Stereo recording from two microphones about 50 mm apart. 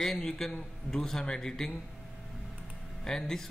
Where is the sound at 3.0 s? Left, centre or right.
Centre.